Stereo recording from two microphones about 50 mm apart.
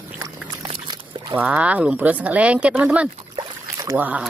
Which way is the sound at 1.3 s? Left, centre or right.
Right.